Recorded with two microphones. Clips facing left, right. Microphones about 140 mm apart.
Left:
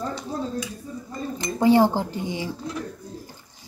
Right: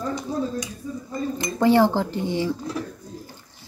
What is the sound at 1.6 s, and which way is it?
Speech, 15° left (ahead or behind).